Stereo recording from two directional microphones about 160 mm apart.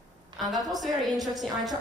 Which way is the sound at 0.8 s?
Centre (ahead or behind).